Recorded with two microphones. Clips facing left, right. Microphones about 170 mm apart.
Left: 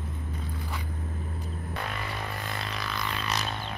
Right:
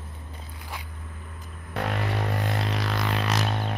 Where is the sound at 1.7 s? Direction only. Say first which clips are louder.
Right 8 dB; 75° right (ahead or behind).